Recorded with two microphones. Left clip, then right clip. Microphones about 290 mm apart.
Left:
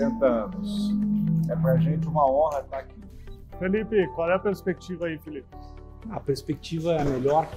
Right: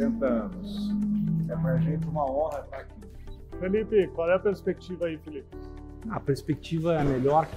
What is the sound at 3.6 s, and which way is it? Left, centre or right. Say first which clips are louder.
Speech: even; left.